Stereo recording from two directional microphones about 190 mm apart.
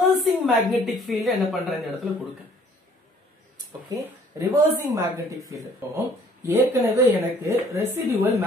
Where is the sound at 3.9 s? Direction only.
20° right (ahead or behind).